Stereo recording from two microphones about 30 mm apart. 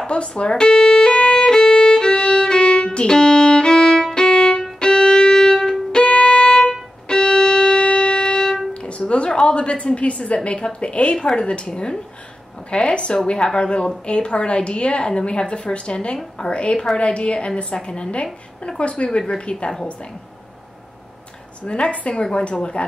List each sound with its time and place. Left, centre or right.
0.0 s speech: left
0.5 s speech: left
1.1 s violin: left
2.7 s music: left
3.1 s violin: left
4.7 s music: left
5.9 s violin: left
7.3 s music: left
8.2 s music: left
8.8 s a woman's voice: left
17.7 s a woman's voice: left
18.8 s a woman's voice: left
21.6 s a woman's voice: left